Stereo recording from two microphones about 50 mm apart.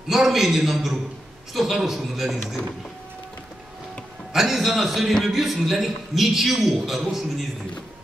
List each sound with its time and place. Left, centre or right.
0.1 s a man's voice: centre
4.3 s a man's voice: centre